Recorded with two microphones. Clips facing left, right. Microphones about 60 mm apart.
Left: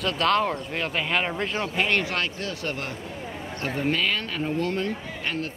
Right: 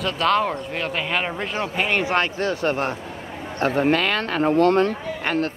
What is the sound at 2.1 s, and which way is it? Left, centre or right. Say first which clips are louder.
Speech: right 7 dB; right.